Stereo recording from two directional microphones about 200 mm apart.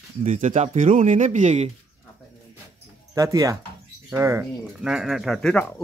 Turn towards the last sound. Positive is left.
turn(degrees=5)  # may be behind; listen again after turning